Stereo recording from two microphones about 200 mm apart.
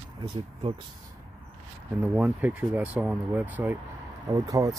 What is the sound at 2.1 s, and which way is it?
Speech, 10° right (ahead or behind).